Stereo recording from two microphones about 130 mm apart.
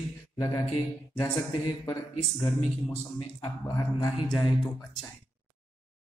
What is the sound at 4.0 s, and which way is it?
Speech, 35° left (ahead or behind).